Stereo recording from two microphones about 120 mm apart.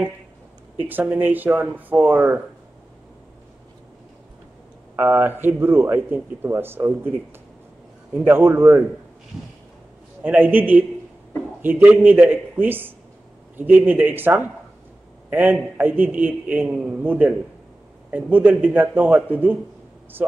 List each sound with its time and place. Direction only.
0.7 s speech: 15° right (ahead or behind)
4.9 s speech: 15° right (ahead or behind)
8.2 s a man's voice: 20° right (ahead or behind)
10.2 s speech: 15° right (ahead or behind)
15.8 s speech: 15° right (ahead or behind)